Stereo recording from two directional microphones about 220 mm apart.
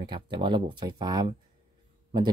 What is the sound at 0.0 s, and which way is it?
Speech, 20° right (ahead or behind).